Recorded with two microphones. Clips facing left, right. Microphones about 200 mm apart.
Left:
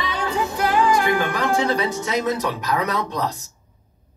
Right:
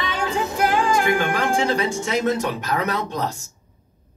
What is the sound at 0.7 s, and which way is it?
Speech, 25° right (ahead or behind).